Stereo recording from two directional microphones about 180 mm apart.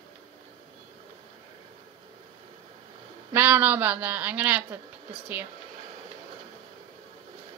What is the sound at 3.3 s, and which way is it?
A woman's voice, 10° right (ahead or behind).